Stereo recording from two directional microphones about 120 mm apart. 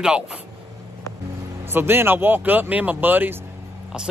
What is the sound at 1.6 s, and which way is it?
Speech, 20° right (ahead or behind).